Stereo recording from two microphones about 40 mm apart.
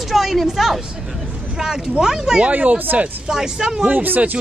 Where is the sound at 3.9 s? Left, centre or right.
Right.